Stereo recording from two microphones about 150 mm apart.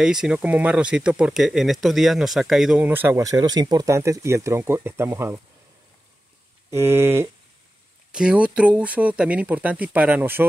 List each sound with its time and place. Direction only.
0.0 s speech: 5° right (ahead or behind)
6.7 s speech: 15° right (ahead or behind)